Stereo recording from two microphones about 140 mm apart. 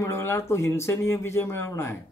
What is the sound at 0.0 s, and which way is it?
A man's voice, 20° left (ahead or behind).